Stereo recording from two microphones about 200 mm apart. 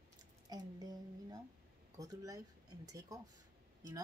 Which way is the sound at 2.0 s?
15° right (ahead or behind).